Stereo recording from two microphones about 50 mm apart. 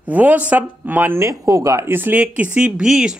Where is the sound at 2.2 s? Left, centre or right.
Right.